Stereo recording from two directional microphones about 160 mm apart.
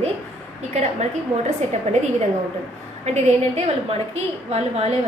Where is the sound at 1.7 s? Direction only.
45° right (ahead or behind).